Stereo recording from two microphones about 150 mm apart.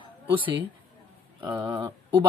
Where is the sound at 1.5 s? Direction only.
30° right (ahead or behind).